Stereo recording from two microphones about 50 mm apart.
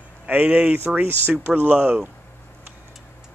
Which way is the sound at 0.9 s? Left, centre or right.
Right.